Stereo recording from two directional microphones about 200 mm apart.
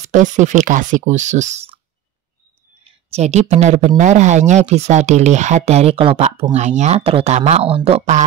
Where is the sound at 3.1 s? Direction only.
35° right (ahead or behind).